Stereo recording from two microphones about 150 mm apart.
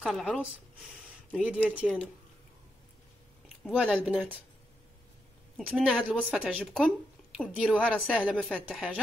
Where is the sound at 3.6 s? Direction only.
5° right (ahead or behind).